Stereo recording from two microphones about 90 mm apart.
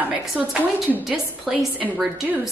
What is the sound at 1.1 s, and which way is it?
Speech, 5° right (ahead or behind).